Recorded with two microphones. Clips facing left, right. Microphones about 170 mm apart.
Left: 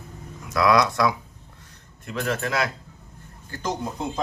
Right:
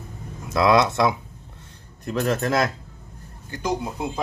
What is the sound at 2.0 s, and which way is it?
Speech, 40° right (ahead or behind).